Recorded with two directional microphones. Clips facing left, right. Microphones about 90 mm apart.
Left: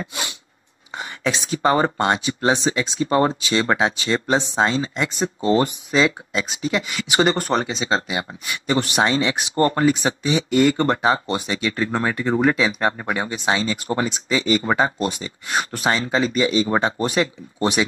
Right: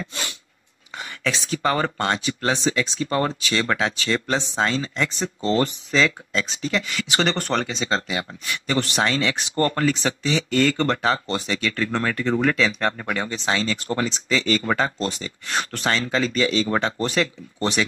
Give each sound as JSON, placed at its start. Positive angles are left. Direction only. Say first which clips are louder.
{"t": 0.0, "sound": "dog", "louder": "left 2 dB", "side_deg": 15}
{"t": 0.9, "sound": "speech", "louder": "left 3 dB", "side_deg": 20}